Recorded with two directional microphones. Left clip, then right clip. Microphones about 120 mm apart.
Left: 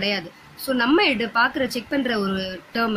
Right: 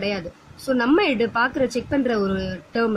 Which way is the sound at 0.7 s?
50° right (ahead or behind).